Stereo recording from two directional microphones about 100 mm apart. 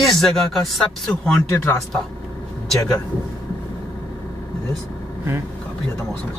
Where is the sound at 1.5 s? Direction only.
20° left (ahead or behind).